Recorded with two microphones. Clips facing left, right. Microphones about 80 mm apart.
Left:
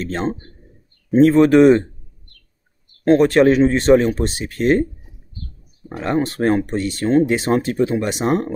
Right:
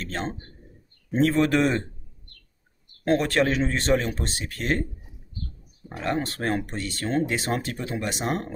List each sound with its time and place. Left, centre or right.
0.0 s speech: left
3.1 s speech: left
6.0 s speech: left